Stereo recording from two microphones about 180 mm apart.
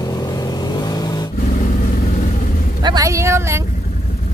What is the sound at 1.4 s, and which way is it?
Vehicle, 45° left (ahead or behind).